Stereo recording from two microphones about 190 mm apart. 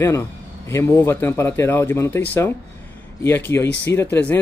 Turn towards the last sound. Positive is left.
turn(degrees=10)  # may be behind; listen again after turning